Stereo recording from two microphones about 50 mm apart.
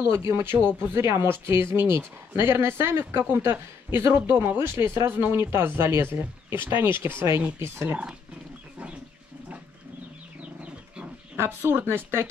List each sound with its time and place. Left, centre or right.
0.0 s speech: right
11.3 s speech: right